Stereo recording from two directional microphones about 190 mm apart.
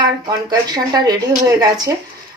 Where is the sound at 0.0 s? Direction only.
20° right (ahead or behind).